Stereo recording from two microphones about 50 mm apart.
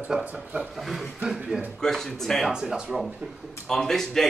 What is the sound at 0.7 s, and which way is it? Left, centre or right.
Speech, centre.